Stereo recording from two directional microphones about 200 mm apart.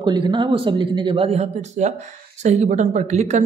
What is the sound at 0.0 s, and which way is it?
Speech, 25° right (ahead or behind).